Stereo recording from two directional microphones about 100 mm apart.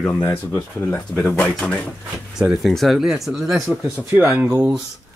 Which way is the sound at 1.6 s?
5° left (ahead or behind).